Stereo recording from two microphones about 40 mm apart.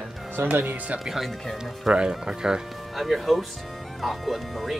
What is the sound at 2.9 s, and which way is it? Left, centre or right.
Speech, centre.